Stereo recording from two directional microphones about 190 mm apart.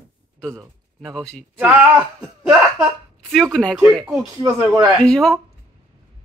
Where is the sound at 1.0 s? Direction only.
Centre (ahead or behind).